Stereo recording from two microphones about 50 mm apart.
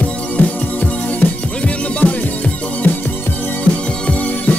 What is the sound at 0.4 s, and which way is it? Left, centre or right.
Music, left.